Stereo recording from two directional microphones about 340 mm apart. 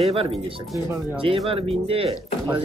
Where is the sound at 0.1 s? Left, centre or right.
Centre.